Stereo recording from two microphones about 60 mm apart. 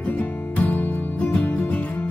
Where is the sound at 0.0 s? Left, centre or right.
Left.